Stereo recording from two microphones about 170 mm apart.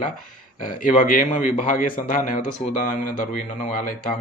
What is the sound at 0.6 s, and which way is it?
Speech, 55° left (ahead or behind).